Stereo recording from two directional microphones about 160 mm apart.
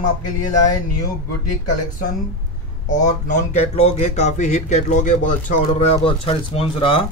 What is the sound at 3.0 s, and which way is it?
Speech, 50° left (ahead or behind).